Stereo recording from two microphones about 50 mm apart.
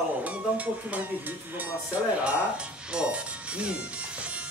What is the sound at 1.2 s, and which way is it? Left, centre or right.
Speech, right.